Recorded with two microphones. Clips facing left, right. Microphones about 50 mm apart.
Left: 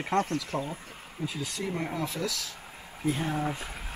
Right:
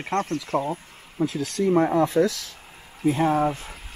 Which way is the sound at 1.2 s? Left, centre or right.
Right.